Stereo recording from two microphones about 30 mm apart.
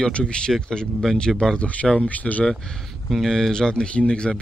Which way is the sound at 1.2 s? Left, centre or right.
Left.